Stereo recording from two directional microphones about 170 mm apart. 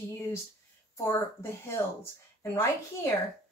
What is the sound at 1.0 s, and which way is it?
Speech, 15° left (ahead or behind).